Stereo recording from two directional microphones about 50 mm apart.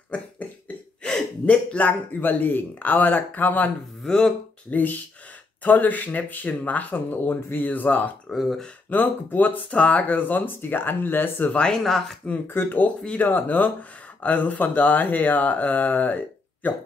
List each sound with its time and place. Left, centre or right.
0.1 s cough: left
1.4 s speech: left
4.0 s speech: centre
4.6 s speech: left
8.3 s speech: centre
8.9 s speech: left
11.5 s speech: centre
11.8 s speech: centre
12.8 s speech: left
13.3 s speech: left